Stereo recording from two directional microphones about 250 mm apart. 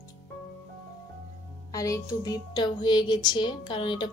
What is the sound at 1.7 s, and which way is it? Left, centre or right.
Speech, centre.